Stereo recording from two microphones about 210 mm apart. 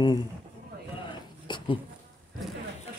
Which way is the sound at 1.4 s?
20° left (ahead or behind).